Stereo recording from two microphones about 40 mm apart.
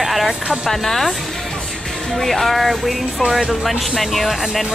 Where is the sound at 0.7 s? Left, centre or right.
Centre.